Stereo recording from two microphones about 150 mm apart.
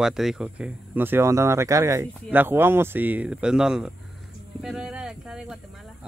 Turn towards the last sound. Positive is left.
turn(degrees=-5)  # may be behind; listen again after turning